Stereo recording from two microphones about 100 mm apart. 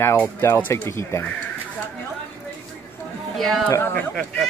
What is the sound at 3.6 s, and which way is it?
Speech, 20° left (ahead or behind).